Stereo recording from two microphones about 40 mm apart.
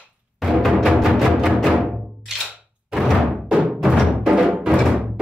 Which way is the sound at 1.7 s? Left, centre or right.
Centre.